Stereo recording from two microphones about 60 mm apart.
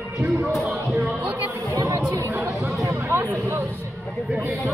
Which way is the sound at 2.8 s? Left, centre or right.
Right.